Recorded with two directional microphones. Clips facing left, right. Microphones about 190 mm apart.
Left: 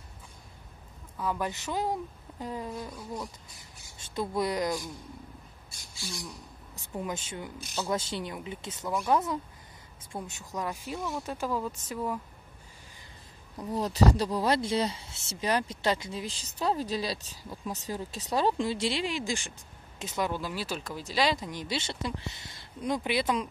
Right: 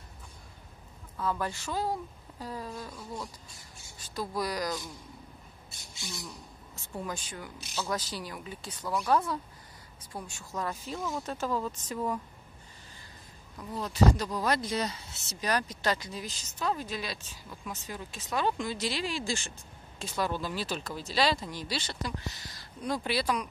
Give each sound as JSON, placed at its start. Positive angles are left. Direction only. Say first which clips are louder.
{"t": 1.1, "sound": "speech", "louder": "even", "side_deg": 10}
{"t": 2.9, "sound": "speech", "louder": "left 2 dB", "side_deg": 10}
{"t": 4.0, "sound": "speech", "louder": "left 3 dB", "side_deg": 25}
{"t": 5.7, "sound": "bird", "louder": "left 1 dB", "side_deg": -25}
{"t": 6.7, "sound": "speech", "louder": "left 2 dB", "side_deg": 15}
{"t": 13.6, "sound": "speech", "louder": "left 2 dB", "side_deg": 40}